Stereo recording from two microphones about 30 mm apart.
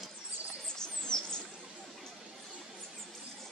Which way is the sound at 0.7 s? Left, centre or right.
Left.